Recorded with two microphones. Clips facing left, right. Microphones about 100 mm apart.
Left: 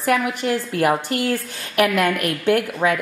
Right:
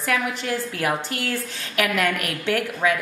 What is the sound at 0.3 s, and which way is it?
A woman's voice, 55° left (ahead or behind).